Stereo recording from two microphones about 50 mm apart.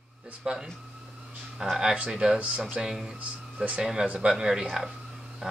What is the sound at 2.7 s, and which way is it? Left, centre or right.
Speech, centre.